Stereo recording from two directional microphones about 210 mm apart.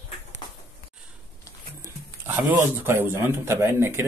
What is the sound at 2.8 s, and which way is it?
Speech, 10° right (ahead or behind).